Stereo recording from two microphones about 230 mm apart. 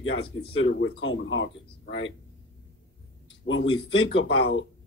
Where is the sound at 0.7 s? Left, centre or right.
Left.